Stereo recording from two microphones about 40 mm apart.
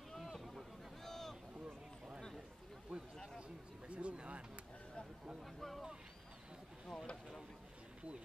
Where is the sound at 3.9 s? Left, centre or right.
Right.